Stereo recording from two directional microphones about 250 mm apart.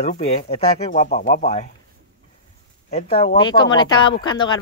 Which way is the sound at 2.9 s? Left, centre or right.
Left.